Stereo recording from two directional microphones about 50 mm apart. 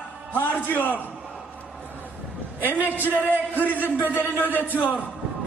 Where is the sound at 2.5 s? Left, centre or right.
Right.